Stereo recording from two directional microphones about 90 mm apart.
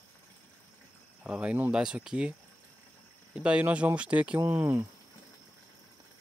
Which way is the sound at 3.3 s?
10° right (ahead or behind).